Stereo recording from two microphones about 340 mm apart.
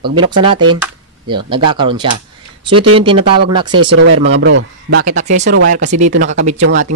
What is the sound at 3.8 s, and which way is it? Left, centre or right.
Speech, right.